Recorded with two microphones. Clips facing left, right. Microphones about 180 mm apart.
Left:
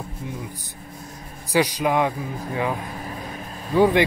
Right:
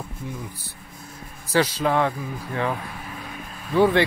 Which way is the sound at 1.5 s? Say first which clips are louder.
Left 1 dB; 15° left (ahead or behind).